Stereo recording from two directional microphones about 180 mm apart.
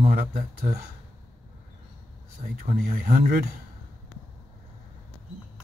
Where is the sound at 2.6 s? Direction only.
50° right (ahead or behind).